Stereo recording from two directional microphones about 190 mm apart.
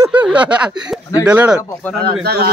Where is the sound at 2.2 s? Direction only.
55° right (ahead or behind).